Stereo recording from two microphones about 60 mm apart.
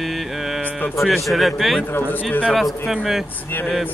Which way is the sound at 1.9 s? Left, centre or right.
Left.